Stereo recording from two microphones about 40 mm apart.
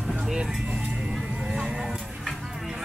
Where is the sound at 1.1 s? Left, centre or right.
Centre.